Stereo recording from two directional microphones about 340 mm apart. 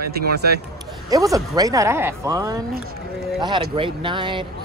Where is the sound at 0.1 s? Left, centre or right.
Right.